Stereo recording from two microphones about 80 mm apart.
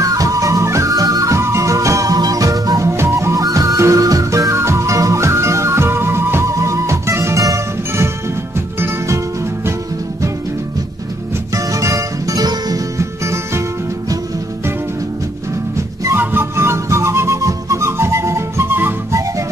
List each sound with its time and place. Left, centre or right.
0.0 s music: right
11.5 s music: right
16.2 s music: right